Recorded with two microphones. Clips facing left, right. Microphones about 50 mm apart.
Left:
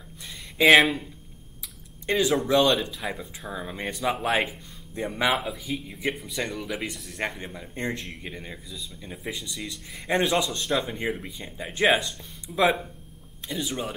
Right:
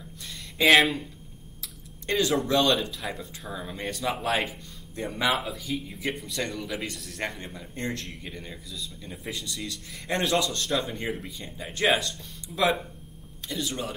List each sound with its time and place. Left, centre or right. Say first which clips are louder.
0.6 s speech: left 2 dB; centre
2.0 s speech: left 2 dB; centre